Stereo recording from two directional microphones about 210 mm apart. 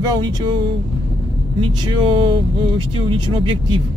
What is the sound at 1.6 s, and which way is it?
Speech, 25° right (ahead or behind).